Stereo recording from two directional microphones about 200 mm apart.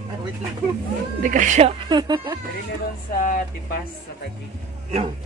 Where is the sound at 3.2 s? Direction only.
45° left (ahead or behind).